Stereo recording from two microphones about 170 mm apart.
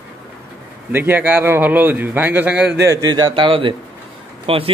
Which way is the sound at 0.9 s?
10° right (ahead or behind).